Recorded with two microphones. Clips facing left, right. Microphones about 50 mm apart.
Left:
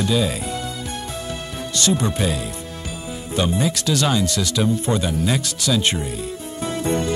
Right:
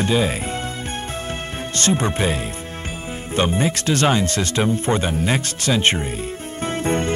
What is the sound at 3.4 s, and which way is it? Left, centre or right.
Speech, right.